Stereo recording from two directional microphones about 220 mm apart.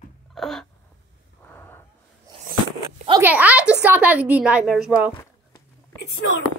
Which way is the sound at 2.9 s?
25° right (ahead or behind).